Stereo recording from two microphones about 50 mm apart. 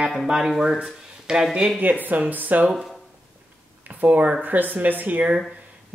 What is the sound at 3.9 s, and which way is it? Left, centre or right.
Speech, right.